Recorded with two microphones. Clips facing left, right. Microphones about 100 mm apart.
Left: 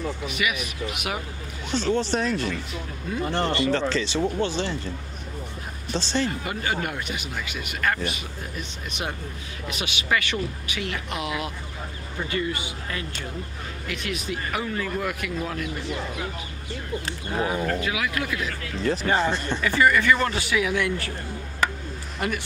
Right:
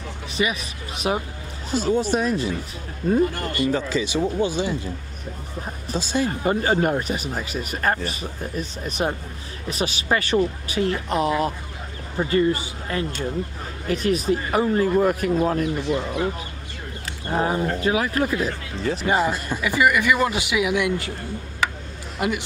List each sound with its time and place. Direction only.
0.3 s speech: 30° right (ahead or behind)
1.7 s speech: 10° right (ahead or behind)
3.3 s speech: 25° left (ahead or behind)
3.9 s speech: 10° right (ahead or behind)
5.9 s speech: 10° right (ahead or behind)
6.4 s speech: 35° right (ahead or behind)
17.3 s speech: 35° right (ahead or behind)
19.0 s speech: 10° right (ahead or behind)
22.2 s speech: 15° right (ahead or behind)